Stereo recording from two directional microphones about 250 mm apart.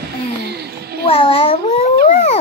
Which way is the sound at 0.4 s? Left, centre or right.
Right.